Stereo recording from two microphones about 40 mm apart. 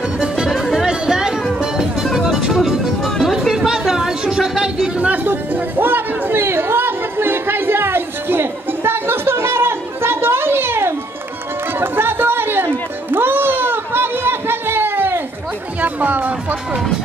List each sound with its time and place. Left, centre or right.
0.8 s music: centre
3.5 s a sound: centre
4.9 s chatter: right
5.2 s chatter: right
11.8 s chatter: right
13.1 s a sound: right
15.8 s music: right